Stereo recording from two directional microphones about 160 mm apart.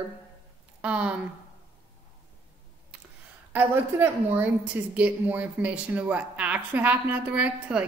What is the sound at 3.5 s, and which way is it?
A woman's voice, 10° right (ahead or behind).